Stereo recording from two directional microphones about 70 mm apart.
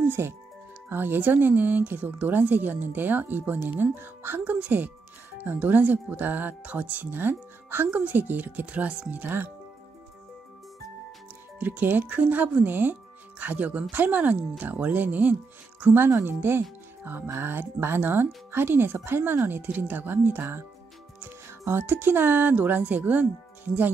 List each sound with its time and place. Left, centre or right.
0.2 s speech: right
11.6 s speech: right